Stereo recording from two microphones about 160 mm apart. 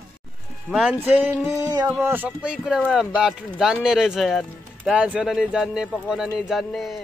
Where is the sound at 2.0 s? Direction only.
10° right (ahead or behind).